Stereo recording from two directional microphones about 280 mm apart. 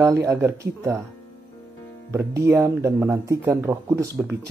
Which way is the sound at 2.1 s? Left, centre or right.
Centre.